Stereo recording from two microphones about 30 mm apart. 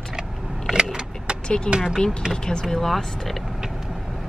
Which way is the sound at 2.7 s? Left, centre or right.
Centre.